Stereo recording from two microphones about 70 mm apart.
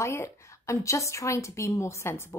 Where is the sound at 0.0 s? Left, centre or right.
Left.